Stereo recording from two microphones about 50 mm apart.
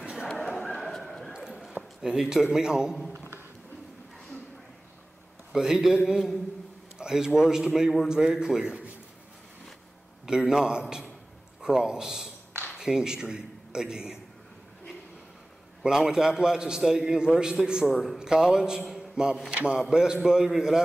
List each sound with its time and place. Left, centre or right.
0.3 s bow-wow: centre
0.7 s dog: centre
1.3 s clip-clop: centre
1.8 s a man's voice: centre
3.1 s a sound: right
5.5 s a man's voice: centre
10.2 s a man's voice: centre
15.8 s a man's voice: centre
17.9 s a man's voice: centre
18.2 s a man's voice: centre